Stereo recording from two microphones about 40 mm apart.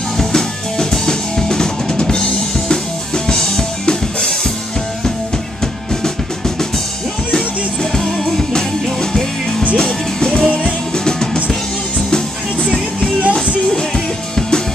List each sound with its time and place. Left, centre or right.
0.2 s drum kit: centre
7.3 s music: centre
9.8 s music: centre
13.7 s music: centre